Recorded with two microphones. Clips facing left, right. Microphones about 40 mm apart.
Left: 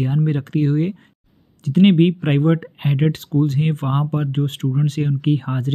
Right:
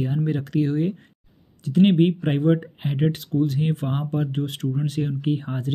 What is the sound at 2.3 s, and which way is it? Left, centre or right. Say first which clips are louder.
Speech: left 3 dB; left.